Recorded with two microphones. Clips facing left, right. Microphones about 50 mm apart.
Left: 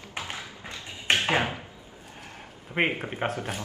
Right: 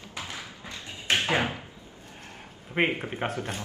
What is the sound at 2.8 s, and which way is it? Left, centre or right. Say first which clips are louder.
Speech: even; centre.